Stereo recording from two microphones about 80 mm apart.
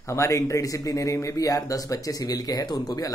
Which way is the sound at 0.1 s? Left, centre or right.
Left.